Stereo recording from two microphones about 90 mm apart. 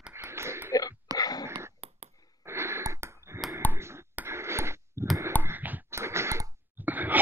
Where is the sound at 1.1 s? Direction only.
45° left (ahead or behind).